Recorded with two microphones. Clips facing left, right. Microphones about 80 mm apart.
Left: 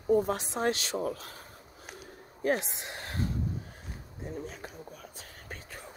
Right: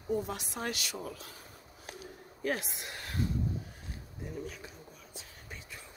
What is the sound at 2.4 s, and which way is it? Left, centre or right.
Speech, left.